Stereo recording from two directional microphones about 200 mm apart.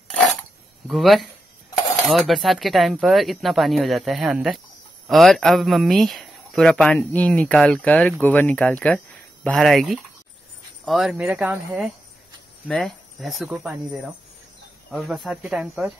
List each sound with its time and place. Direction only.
0.8 s speech: centre (ahead or behind)
14.9 s speech: centre (ahead or behind)